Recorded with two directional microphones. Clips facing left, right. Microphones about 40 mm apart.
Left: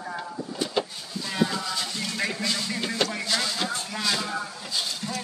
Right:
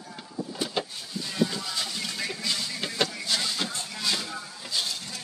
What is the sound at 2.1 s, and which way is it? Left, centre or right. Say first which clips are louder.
Music: left 4 dB; left.